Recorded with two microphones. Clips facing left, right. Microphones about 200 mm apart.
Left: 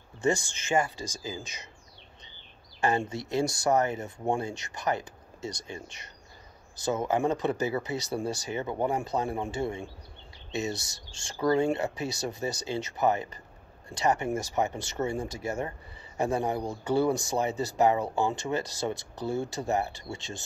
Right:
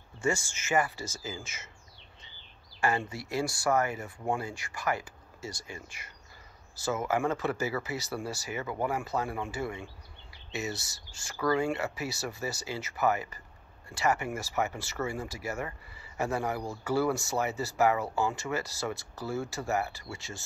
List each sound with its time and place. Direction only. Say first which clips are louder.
1.0 s speech: left 2 dB; 15° left (ahead or behind)
2.8 s speech: left 3 dB; 20° left (ahead or behind)